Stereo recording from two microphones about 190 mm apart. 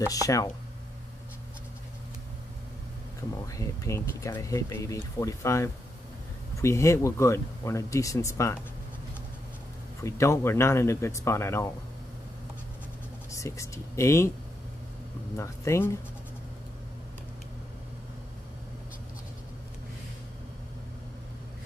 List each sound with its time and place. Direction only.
0.1 s speech: 20° left (ahead or behind)
3.5 s speech: 15° left (ahead or behind)
10.0 s speech: 15° left (ahead or behind)
13.3 s speech: 15° left (ahead or behind)
15.3 s speech: 15° left (ahead or behind)